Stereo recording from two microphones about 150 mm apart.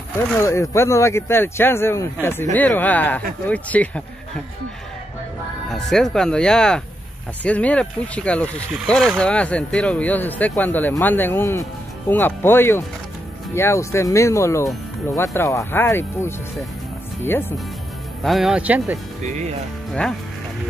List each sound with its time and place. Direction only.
0.4 s speech: 20° left (ahead or behind)
5.7 s speech: 5° left (ahead or behind)
18.2 s speech: centre (ahead or behind)
19.9 s speech: 5° left (ahead or behind)